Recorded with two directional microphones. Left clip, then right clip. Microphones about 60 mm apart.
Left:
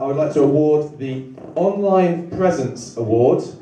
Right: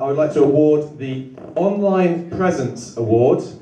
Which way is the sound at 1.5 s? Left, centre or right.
Centre.